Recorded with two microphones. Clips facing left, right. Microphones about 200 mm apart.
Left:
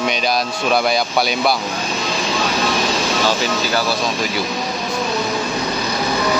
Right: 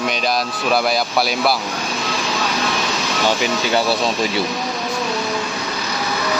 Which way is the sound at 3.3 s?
20° right (ahead or behind).